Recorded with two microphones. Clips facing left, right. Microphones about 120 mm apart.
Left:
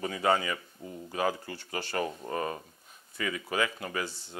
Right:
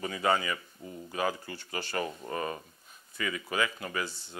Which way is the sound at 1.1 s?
40° left (ahead or behind).